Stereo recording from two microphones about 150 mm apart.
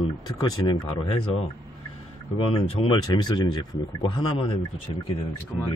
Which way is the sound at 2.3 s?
35° left (ahead or behind).